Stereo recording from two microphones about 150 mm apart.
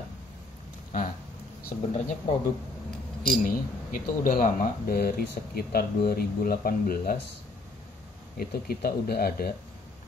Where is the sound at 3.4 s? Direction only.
70° left (ahead or behind).